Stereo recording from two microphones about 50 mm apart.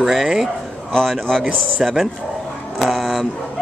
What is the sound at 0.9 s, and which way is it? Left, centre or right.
Speech, centre.